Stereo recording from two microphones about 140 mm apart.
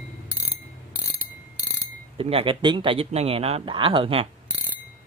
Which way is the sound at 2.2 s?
40° right (ahead or behind).